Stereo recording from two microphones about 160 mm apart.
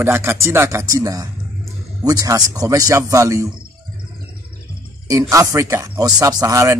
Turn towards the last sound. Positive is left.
turn(degrees=-20)  # may be behind; listen again after turning